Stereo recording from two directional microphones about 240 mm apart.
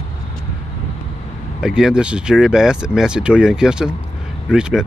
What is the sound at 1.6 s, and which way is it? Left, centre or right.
Speech, centre.